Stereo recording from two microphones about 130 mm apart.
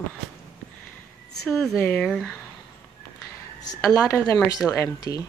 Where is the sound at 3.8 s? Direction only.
5° left (ahead or behind).